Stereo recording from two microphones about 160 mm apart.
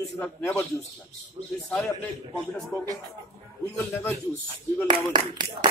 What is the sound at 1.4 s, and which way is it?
Speech, 35° right (ahead or behind).